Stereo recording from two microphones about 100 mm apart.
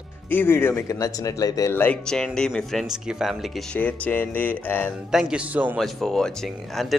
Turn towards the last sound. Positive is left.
turn(degrees=0)  # may be behind; listen again after turning